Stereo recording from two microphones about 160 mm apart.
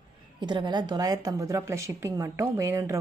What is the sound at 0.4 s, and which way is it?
Speech, 30° right (ahead or behind).